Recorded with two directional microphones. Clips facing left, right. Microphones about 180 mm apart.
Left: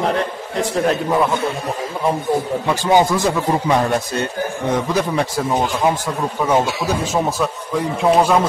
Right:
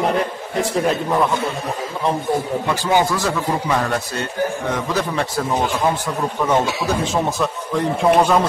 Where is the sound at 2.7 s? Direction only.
15° left (ahead or behind).